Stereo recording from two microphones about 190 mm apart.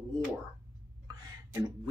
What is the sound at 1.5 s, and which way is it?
Speech, 20° right (ahead or behind).